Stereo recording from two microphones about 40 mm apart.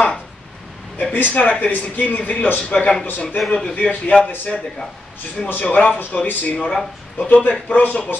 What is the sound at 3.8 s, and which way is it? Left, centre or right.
Speech, left.